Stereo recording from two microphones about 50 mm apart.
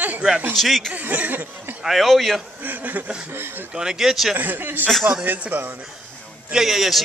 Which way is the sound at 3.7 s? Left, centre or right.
Centre.